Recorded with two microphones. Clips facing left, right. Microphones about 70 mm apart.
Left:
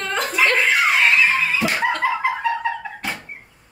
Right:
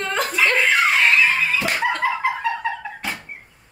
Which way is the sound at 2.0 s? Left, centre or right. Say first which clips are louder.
Left 2 dB; centre.